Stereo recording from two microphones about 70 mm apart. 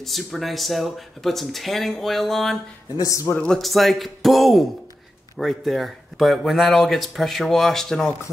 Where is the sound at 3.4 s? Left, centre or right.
Centre.